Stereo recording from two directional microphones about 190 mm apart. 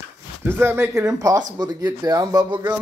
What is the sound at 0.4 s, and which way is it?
Speech, 10° right (ahead or behind).